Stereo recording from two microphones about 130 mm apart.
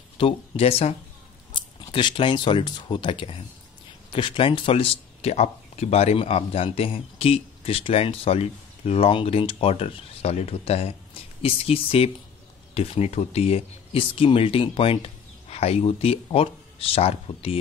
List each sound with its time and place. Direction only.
0.2 s speech: 50° left (ahead or behind)
1.5 s speech: 40° left (ahead or behind)